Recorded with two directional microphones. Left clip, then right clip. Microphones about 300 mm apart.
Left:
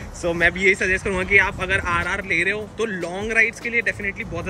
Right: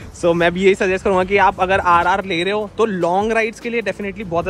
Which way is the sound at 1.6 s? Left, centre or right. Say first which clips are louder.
Right 8 dB; centre.